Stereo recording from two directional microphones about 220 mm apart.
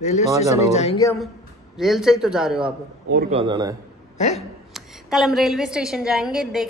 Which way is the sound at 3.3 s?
25° right (ahead or behind).